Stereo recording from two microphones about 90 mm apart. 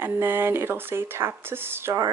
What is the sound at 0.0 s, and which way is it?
Speech, 25° right (ahead or behind).